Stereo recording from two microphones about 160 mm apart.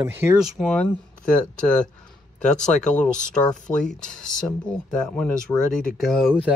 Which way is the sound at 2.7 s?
50° left (ahead or behind).